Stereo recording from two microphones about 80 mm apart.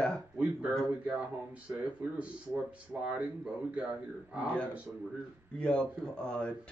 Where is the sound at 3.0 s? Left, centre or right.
Centre.